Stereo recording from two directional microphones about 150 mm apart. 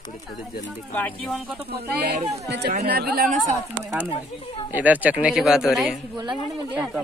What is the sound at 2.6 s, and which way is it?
Speech, 90° right.